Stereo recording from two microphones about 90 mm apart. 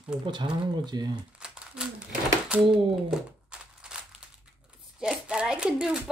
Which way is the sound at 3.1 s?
10° right (ahead or behind).